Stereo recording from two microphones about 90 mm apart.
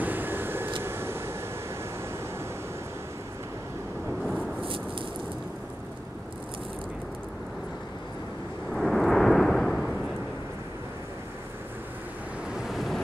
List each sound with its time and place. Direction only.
0.0 s vehicle: 20° right (ahead or behind)
8.7 s thunder: 5° left (ahead or behind)
12.5 s waves: centre (ahead or behind)